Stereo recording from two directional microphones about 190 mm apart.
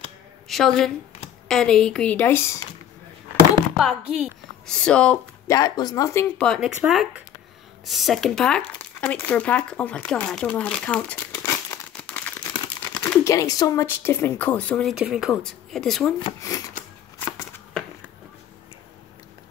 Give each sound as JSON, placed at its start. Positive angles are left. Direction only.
{"t": 0.5, "sound": "speech", "side_deg": 0}
{"t": 3.7, "sound": "speech", "side_deg": 0}
{"t": 5.6, "sound": "speech", "side_deg": 20}
{"t": 6.3, "sound": "speech", "side_deg": 5}
{"t": 16.3, "sound": "speech", "side_deg": 15}
{"t": 17.2, "sound": "shuffling cards", "side_deg": 10}